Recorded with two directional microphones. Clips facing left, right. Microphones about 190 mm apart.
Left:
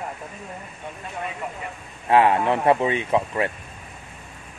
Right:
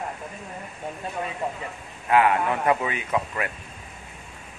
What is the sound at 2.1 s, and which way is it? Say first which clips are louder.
Speech: left 3 dB; 30° left (ahead or behind).